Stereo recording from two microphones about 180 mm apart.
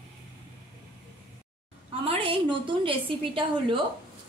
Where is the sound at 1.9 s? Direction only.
30° right (ahead or behind).